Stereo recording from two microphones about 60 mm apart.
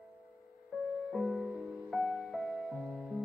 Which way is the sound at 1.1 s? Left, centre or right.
Centre.